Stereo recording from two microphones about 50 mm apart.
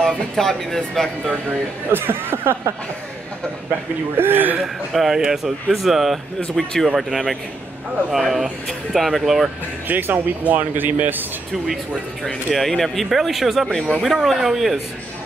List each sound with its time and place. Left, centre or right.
0.0 s speech: centre
1.9 s speech: right
4.2 s speech: right
4.6 s speech: centre
9.8 s speech: right
12.5 s speech: centre